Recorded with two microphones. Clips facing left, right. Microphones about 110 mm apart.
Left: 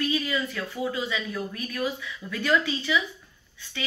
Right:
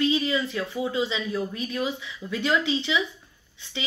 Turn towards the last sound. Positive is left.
turn(degrees=-20)  # may be behind; listen again after turning